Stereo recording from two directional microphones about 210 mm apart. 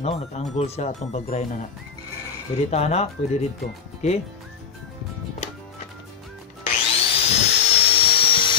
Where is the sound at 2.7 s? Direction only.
30° left (ahead or behind).